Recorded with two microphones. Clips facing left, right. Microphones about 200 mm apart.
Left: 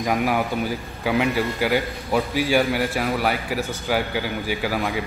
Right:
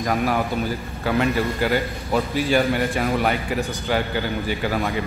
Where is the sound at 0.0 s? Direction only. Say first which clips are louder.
Even; 10° left (ahead or behind).